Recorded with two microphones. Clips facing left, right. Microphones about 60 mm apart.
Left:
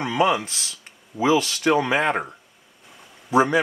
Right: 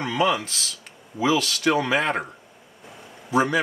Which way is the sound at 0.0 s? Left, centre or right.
Centre.